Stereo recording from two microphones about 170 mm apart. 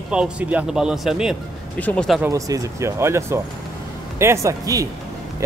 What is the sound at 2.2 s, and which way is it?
Speech, 20° right (ahead or behind).